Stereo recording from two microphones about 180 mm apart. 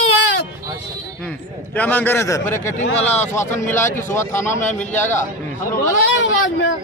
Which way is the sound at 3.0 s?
40° left (ahead or behind).